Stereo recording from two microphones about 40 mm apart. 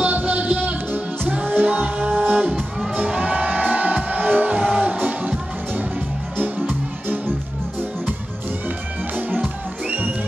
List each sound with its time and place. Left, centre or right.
0.0 s music: right
4.6 s music: right
4.9 s music: right
8.6 s music: right